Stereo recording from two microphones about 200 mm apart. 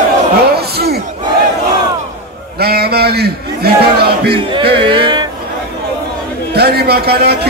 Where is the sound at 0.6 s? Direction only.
50° right (ahead or behind).